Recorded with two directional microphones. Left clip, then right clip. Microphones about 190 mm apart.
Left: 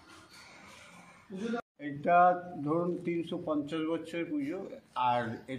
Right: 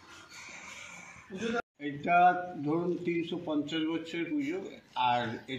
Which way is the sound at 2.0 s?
10° left (ahead or behind).